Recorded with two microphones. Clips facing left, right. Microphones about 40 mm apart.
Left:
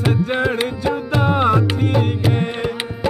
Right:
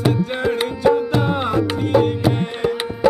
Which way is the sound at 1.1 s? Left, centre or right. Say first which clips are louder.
Left 1 dB; left.